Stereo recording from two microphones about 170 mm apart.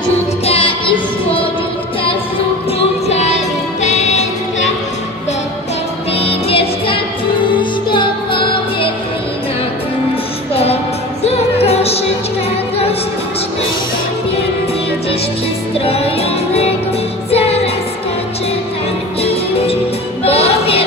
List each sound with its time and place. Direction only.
0.5 s child singing: 30° left (ahead or behind)
3.1 s music: 40° left (ahead or behind)
6.1 s music: 35° left (ahead or behind)
10.5 s music: 35° left (ahead or behind)
15.8 s music: 35° left (ahead or behind)
19.2 s music: 35° left (ahead or behind)